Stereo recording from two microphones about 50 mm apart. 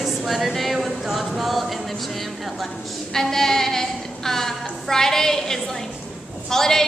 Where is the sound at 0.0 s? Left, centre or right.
Centre.